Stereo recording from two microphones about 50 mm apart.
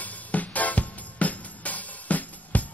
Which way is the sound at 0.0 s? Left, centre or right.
Left.